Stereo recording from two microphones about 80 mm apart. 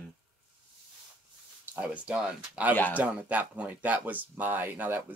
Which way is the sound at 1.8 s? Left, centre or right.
Centre.